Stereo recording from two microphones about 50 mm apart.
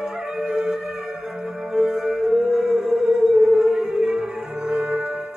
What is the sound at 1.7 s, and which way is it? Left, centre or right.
Music, centre.